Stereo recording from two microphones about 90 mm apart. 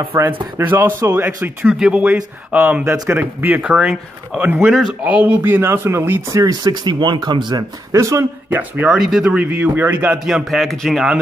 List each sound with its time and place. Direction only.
0.1 s speech: 25° right (ahead or behind); by 4.0 s 10° right (ahead or behind)
4.4 s speech: 20° right (ahead or behind)
6.3 s speech: 45° right (ahead or behind)
7.9 s speech: 35° right (ahead or behind)
8.5 s speech: 20° right (ahead or behind)
8.9 s speech: 5° right (ahead or behind)
10.1 s speech: 5° right (ahead or behind)